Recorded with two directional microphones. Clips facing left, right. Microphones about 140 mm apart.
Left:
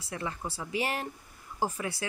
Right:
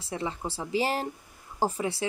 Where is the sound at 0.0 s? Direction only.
25° right (ahead or behind).